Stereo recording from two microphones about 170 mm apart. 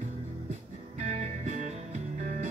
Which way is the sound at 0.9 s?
45° right (ahead or behind).